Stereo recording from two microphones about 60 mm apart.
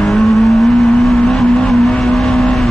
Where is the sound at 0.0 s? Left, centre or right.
Centre.